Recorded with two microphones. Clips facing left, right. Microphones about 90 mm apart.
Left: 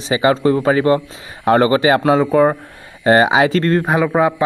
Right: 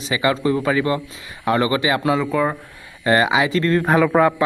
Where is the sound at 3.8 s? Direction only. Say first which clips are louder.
Even; 15° left (ahead or behind).